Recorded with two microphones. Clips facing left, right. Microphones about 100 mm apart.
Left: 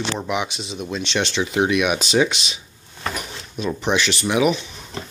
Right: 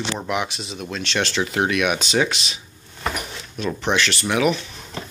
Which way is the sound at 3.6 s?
5° left (ahead or behind).